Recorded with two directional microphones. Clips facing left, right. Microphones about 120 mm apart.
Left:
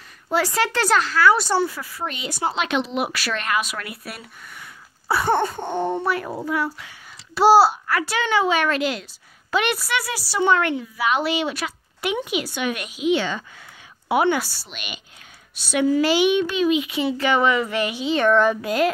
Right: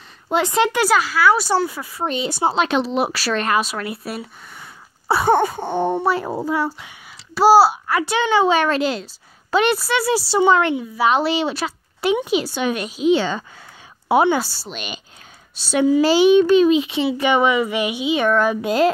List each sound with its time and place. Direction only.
0.3 s speech: 20° right (ahead or behind)
0.8 s a child's voice: 10° right (ahead or behind)
1.7 s speech: 20° right (ahead or behind)
5.2 s a child's voice: 10° right (ahead or behind)
6.0 s speech: 30° right (ahead or behind)
7.3 s a child's voice: 5° right (ahead or behind)
7.8 s a woman's voice: 20° right (ahead or behind)
18.6 s speech: 30° right (ahead or behind)